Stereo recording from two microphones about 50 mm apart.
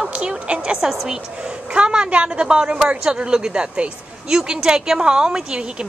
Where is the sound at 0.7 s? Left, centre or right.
Centre.